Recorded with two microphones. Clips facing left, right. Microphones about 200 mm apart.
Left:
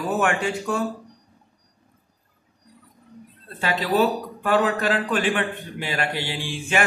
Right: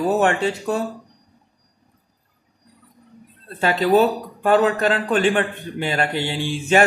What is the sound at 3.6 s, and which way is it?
Speech, 40° right (ahead or behind).